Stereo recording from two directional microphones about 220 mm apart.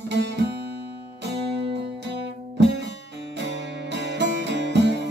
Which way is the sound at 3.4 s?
55° right (ahead or behind).